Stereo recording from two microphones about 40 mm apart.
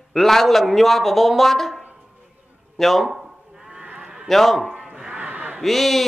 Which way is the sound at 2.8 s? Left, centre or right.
Centre.